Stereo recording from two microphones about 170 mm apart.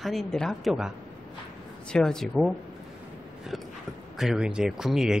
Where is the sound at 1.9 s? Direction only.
5° left (ahead or behind).